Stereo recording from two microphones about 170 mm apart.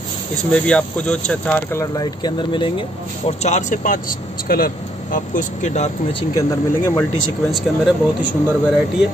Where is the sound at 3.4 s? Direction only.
45° left (ahead or behind).